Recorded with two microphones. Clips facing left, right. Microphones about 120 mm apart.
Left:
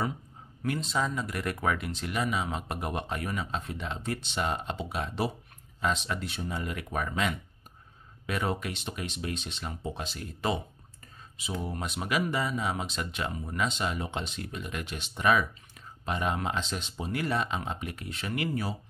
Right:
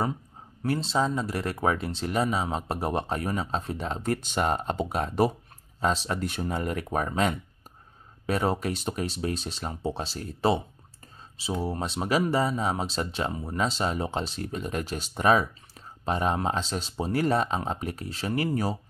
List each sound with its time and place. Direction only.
0.6 s speech: 30° right (ahead or behind)